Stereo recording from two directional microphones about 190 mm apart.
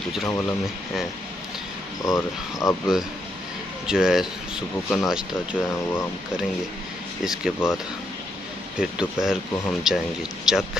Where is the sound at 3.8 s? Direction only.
5° right (ahead or behind).